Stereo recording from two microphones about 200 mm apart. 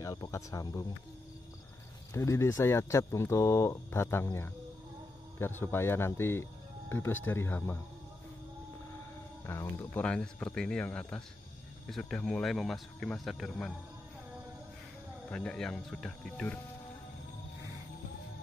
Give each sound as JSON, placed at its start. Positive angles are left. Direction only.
{"t": 0.0, "sound": "speech", "side_deg": 15}
{"t": 2.1, "sound": "speech", "side_deg": 15}
{"t": 9.5, "sound": "speech", "side_deg": 15}
{"t": 15.3, "sound": "speech", "side_deg": 5}